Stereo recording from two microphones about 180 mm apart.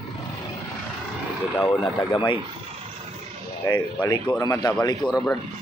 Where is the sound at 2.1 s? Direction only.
25° left (ahead or behind).